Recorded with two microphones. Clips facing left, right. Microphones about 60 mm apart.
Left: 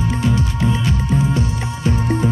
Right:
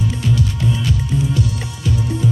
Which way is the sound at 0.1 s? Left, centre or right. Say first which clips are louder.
Left 1 dB; left.